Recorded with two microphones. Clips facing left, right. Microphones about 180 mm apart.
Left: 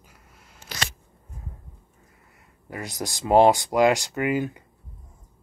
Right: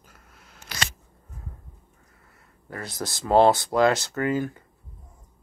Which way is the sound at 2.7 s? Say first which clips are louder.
Left 1 dB; 15° left (ahead or behind).